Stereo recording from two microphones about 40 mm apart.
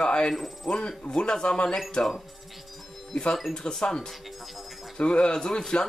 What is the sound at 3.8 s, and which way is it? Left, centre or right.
Speech, centre.